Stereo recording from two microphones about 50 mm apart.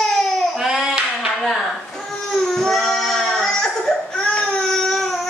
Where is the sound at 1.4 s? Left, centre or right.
Centre.